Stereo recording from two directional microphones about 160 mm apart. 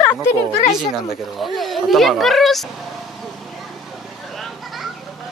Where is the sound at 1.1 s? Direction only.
Centre (ahead or behind).